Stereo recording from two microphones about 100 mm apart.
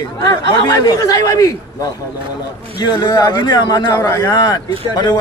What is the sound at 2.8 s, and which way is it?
A man's voice, 45° left (ahead or behind).